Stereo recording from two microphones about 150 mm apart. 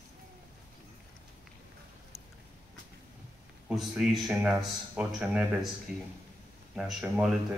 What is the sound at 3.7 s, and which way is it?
Speech, centre (ahead or behind).